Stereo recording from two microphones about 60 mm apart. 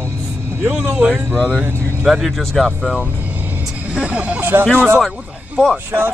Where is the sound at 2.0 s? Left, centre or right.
Centre.